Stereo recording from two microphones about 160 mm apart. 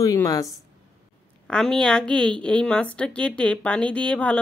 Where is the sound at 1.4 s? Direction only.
5° left (ahead or behind).